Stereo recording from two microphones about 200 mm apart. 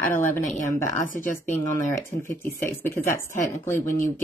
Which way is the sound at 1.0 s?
40° left (ahead or behind).